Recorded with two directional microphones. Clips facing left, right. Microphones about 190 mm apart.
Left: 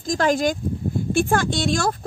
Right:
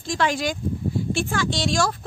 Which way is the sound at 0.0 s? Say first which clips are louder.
Left 4 dB; 45° left (ahead or behind).